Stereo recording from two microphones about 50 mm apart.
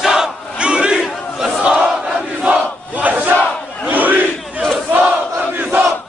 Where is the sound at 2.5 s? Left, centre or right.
Right.